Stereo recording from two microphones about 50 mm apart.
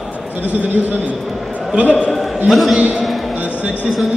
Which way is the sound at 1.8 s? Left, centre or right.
Left.